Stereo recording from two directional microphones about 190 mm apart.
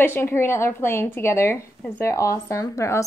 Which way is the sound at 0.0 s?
10° left (ahead or behind).